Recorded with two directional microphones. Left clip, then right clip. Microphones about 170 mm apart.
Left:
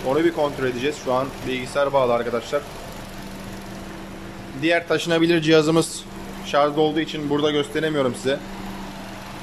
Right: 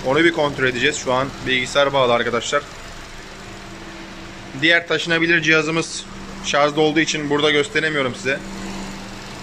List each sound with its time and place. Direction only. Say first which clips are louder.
0.1 s speech: right 4 dB; 10° left (ahead or behind)
4.6 s a man's voice: right 4 dB; 10° left (ahead or behind); by 5.9 s 25° left (ahead or behind)
6.4 s speech: right 2 dB; 10° left (ahead or behind)